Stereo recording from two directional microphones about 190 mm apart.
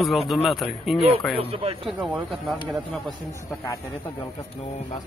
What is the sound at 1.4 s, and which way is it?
Speech, 30° right (ahead or behind).